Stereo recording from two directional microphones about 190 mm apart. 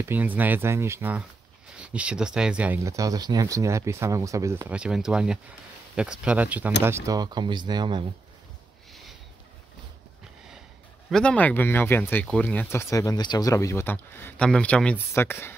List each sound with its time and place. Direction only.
0.1 s speech: 10° right (ahead or behind)
11.1 s speech: 5° left (ahead or behind)